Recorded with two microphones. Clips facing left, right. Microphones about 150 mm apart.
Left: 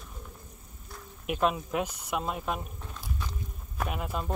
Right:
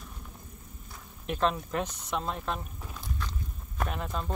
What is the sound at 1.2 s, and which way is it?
Speech, 10° left (ahead or behind).